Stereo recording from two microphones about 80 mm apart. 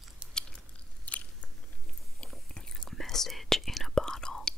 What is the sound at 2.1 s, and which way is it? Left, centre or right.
Biting, centre.